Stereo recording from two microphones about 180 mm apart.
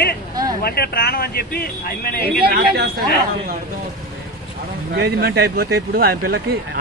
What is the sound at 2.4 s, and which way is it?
Speech, 60° right (ahead or behind).